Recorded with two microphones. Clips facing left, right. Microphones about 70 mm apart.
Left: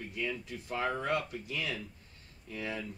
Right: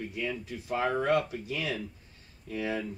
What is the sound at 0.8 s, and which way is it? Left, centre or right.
Speech, centre.